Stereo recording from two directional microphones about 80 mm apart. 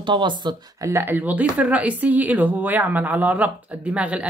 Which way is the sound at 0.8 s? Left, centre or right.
Right.